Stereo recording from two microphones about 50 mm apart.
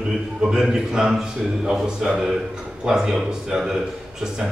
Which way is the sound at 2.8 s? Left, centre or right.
Centre.